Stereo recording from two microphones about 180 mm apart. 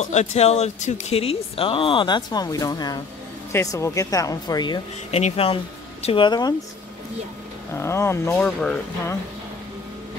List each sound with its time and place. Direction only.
0.0 s speech: 40° left (ahead or behind)
7.7 s speech: 15° left (ahead or behind)